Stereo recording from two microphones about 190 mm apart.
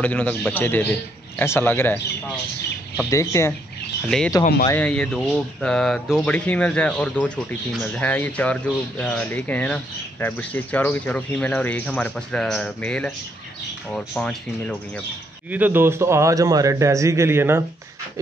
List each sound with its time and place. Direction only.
0.0 s speech: 10° left (ahead or behind)
4.0 s speech: 5° left (ahead or behind)
15.5 s a man's voice: 10° right (ahead or behind)